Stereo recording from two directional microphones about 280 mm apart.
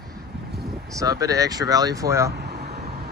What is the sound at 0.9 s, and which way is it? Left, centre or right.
Speech, centre.